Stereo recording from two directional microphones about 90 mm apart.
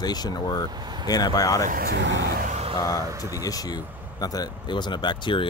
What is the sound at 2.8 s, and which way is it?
Speech, 40° left (ahead or behind).